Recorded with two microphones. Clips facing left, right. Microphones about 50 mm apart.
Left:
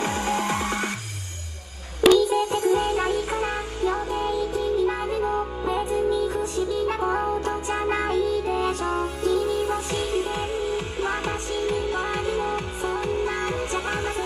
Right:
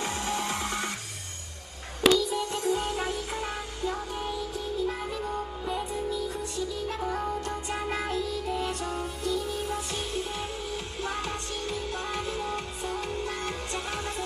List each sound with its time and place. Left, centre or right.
0.0 s music: left
2.1 s music: left
5.0 s music: left